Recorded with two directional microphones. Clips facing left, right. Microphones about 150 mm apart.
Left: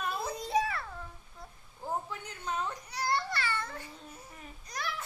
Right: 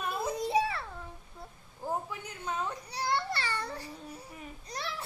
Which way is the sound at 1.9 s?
10° right (ahead or behind).